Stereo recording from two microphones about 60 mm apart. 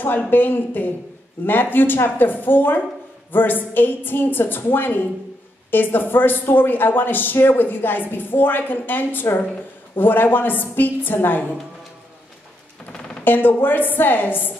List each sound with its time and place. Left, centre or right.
0.3 s speech: left
13.2 s speech: left